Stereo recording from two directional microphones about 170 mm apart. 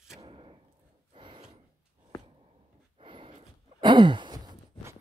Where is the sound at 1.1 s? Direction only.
30° right (ahead or behind).